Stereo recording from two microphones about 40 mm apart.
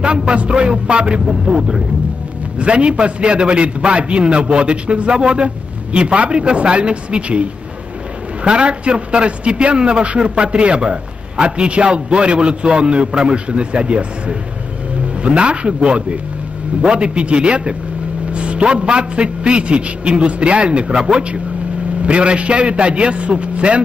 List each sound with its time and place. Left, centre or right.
0.0 s a man's voice: right
1.2 s speech: centre
2.6 s a man's voice: right
8.5 s a man's voice: right